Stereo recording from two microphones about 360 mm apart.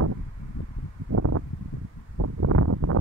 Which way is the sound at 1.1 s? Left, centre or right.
Right.